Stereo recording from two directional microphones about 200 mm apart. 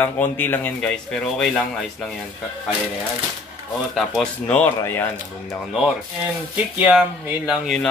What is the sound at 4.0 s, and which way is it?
Speech, 5° left (ahead or behind).